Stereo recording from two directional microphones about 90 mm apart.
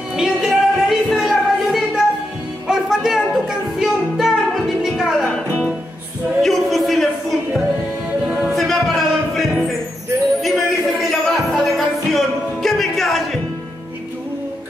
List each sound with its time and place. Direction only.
0.1 s a sound: 5° right (ahead or behind)
2.7 s music: 5° right (ahead or behind)
6.4 s music: centre (ahead or behind)